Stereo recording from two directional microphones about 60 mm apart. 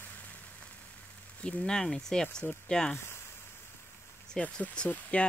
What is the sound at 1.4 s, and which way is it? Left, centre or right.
Speech, centre.